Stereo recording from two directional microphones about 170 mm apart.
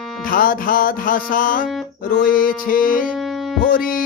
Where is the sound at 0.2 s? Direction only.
55° left (ahead or behind).